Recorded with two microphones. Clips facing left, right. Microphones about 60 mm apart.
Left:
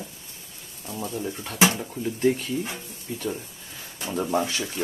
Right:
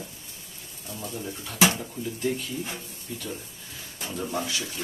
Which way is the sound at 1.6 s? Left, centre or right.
Centre.